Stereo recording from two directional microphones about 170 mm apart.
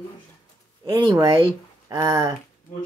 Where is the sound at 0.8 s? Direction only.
25° right (ahead or behind).